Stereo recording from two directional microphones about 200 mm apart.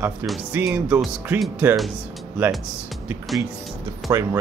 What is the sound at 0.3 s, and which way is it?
Speech, 5° right (ahead or behind).